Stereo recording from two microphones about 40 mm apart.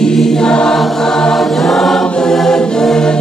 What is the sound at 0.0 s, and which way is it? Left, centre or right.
Choir, centre.